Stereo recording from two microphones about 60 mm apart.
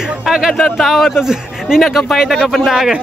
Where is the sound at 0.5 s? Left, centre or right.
Centre.